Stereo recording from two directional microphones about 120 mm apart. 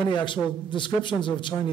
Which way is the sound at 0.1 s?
40° left (ahead or behind).